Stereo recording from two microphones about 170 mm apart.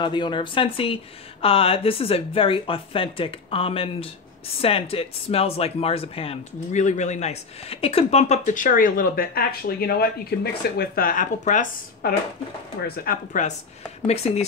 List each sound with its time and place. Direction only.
0.0 s speech: 30° left (ahead or behind); by 12.1 s 50° left (ahead or behind)
12.8 s speech: 60° left (ahead or behind)
14.0 s speech: 40° left (ahead or behind)